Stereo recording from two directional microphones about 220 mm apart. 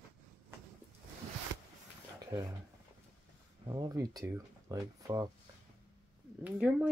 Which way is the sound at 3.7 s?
15° right (ahead or behind).